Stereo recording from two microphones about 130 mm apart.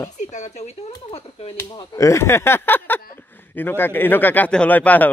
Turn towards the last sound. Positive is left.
turn(degrees=15)  # may be behind; listen again after turning